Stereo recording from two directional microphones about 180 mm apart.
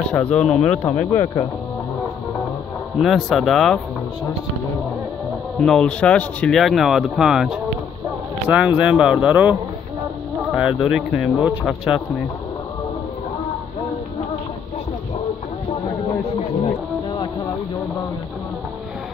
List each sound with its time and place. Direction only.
0.1 s speech: 5° left (ahead or behind)
3.0 s speech: centre (ahead or behind)
5.6 s speech: 5° left (ahead or behind)
16.3 s a sound: 30° left (ahead or behind)